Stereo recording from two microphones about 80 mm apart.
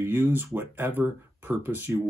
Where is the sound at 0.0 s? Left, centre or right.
Right.